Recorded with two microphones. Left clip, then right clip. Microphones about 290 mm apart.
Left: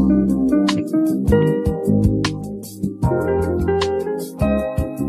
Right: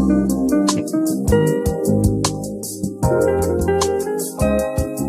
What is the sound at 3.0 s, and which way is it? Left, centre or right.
Music, centre.